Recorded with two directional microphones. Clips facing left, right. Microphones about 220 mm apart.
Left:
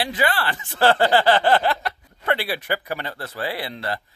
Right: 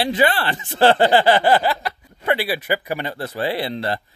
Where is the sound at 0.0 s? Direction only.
25° right (ahead or behind).